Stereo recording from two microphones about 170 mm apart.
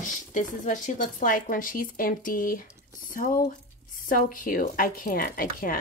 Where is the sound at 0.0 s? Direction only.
50° left (ahead or behind).